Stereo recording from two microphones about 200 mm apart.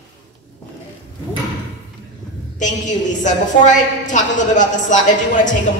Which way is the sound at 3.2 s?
40° left (ahead or behind).